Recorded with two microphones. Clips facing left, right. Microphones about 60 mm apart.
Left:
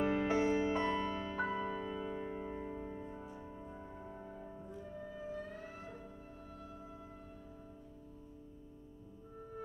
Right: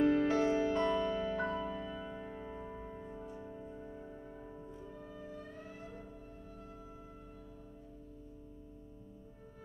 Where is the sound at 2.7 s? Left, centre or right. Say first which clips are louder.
Left 2 dB; centre.